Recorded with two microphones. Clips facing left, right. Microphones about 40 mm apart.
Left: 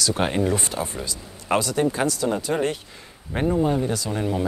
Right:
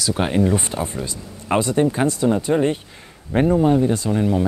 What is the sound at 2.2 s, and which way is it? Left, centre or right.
Speech, centre.